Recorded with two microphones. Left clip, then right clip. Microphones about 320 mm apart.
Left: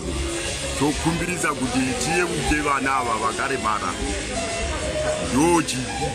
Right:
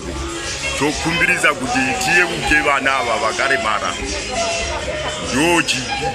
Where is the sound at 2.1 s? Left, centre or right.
Right.